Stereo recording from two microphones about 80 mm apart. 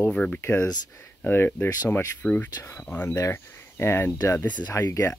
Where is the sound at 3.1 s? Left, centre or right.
Left.